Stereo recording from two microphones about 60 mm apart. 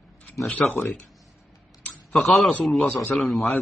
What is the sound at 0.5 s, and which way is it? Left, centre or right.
Speech, left.